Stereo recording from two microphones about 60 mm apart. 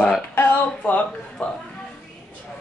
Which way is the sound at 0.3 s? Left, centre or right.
Left.